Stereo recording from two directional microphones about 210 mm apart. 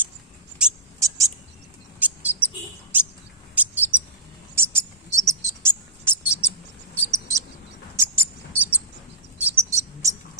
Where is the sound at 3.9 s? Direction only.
20° right (ahead or behind).